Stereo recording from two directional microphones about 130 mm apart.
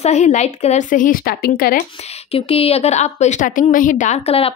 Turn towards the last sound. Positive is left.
turn(degrees=50)  # may be behind; listen again after turning